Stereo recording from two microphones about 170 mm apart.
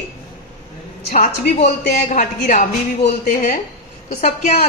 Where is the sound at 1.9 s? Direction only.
45° left (ahead or behind).